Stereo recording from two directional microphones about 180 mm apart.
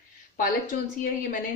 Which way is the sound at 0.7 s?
50° left (ahead or behind).